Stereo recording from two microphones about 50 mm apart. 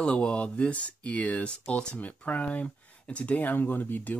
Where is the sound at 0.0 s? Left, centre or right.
Left.